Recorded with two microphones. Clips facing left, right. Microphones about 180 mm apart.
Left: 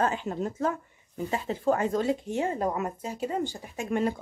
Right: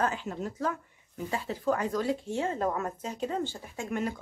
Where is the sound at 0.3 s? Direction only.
35° left (ahead or behind).